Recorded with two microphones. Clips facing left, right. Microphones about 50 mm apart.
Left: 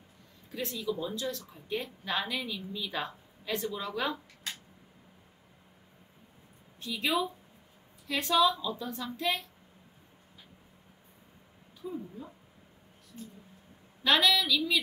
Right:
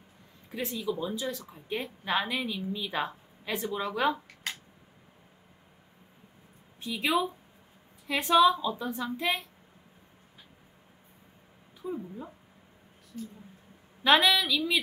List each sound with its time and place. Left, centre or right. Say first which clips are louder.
0.5 s a woman's voice: right 2 dB; centre
6.8 s a woman's voice: right 2 dB; centre
11.8 s a woman's voice: right 3 dB; right
14.0 s a woman's voice: right 3 dB; right